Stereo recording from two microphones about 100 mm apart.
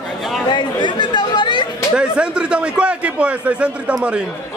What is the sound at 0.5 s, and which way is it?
Speech, 50° left (ahead or behind).